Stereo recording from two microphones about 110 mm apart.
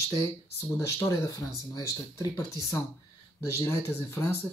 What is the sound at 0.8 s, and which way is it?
Speech, 30° left (ahead or behind).